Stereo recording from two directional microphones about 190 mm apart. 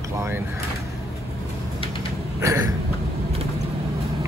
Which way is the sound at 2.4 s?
20° right (ahead or behind).